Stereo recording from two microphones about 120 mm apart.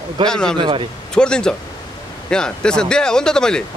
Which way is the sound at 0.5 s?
45° right (ahead or behind).